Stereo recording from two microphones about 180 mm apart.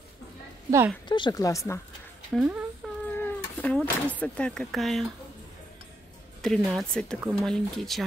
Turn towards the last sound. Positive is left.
turn(degrees=0)  # may be behind; listen again after turning